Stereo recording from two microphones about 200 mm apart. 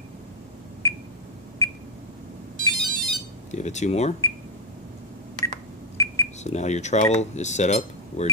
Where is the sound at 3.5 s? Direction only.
35° left (ahead or behind).